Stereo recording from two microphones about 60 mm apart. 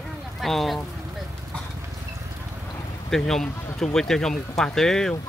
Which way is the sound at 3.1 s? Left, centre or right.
Centre.